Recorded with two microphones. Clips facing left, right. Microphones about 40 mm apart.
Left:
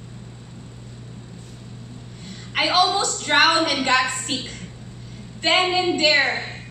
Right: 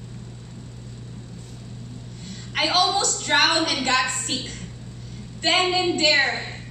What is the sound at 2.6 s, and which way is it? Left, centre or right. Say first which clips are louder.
A woman's voice: left 2 dB; centre.